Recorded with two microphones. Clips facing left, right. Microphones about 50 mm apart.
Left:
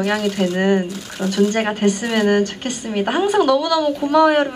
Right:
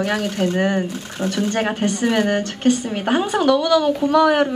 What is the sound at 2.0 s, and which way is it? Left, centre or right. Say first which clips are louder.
Speech: right 2 dB; centre.